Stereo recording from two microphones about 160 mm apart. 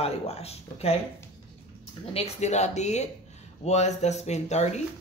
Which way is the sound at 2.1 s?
45° left (ahead or behind).